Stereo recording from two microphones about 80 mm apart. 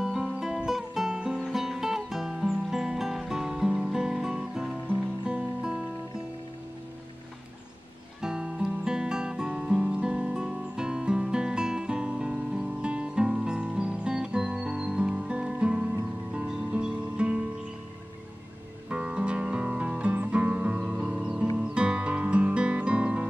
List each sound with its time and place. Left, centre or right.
0.0 s music: centre
8.2 s music: centre
18.9 s music: centre